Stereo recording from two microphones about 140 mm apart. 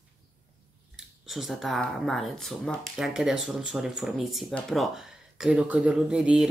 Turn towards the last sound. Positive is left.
turn(degrees=-5)  # may be behind; listen again after turning